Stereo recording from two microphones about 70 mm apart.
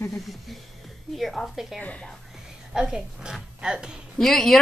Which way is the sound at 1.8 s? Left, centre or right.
Centre.